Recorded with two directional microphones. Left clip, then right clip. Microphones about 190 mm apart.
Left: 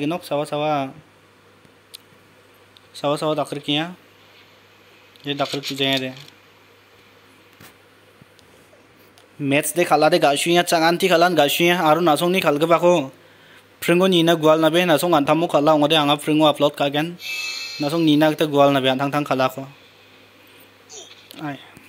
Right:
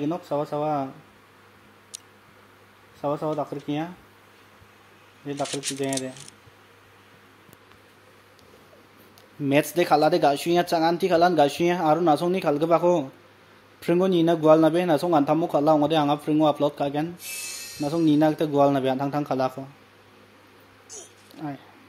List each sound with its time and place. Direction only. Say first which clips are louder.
0.0 s a man's voice: left 4 dB; 5° left (ahead or behind)
3.2 s speech: left 6 dB; 25° left (ahead or behind)
5.2 s speech: left 6 dB; 15° left (ahead or behind)
5.5 s a man's voice: left 4 dB; centre (ahead or behind)
9.4 s a man's voice: left 2 dB; centre (ahead or behind)
20.9 s a sound: left 5 dB; centre (ahead or behind)